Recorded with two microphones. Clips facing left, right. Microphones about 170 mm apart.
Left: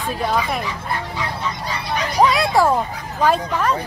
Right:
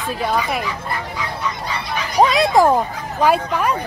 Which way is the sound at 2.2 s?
20° right (ahead or behind).